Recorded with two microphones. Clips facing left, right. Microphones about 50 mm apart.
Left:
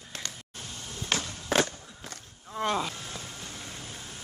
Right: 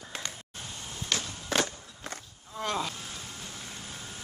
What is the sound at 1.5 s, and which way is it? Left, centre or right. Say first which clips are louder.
Walk: left 3 dB; centre.